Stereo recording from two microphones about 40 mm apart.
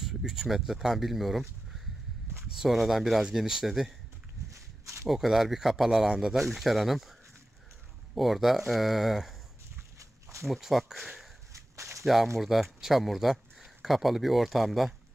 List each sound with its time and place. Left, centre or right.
0.2 s a sound: centre
0.5 s speech: centre
2.6 s speech: centre
5.0 s speech: centre
6.3 s speech: centre
10.4 s speech: centre